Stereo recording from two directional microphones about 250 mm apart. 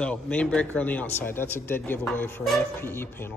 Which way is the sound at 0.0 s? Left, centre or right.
Centre.